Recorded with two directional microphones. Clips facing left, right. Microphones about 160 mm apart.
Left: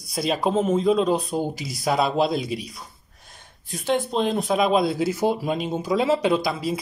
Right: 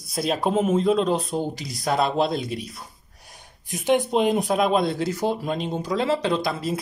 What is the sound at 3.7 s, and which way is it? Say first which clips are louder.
Speech: right 3 dB; 15° right (ahead or behind).